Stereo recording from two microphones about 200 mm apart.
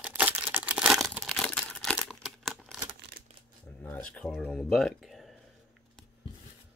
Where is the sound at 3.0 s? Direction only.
55° right (ahead or behind).